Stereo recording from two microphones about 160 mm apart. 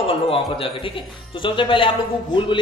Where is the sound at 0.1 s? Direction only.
35° left (ahead or behind).